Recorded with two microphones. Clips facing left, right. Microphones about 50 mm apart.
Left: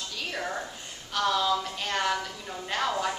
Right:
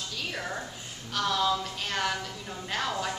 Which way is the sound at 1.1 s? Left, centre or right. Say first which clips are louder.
Left 2 dB; centre.